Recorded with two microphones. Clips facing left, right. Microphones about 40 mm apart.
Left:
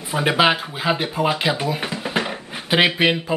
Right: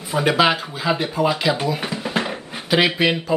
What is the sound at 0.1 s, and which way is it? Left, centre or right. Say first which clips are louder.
Speech: even; centre.